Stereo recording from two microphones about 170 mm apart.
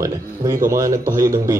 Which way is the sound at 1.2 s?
20° right (ahead or behind).